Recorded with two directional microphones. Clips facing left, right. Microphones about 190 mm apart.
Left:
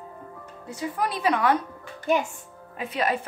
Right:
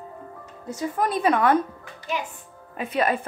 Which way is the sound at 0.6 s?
45° right (ahead or behind).